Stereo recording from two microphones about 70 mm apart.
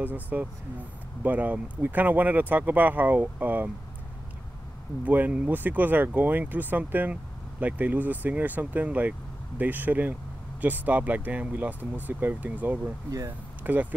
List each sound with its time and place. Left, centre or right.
0.0 s speech: right
5.0 s speech: right